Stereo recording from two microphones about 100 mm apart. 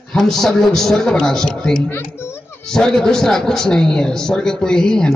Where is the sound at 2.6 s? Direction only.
5° left (ahead or behind).